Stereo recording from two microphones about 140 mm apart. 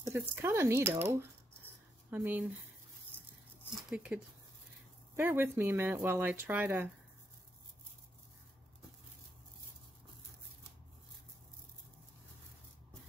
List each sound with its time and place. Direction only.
0.0 s speech: 15° right (ahead or behind)
1.6 s a sound: 15° right (ahead or behind)
3.9 s speech: 10° right (ahead or behind)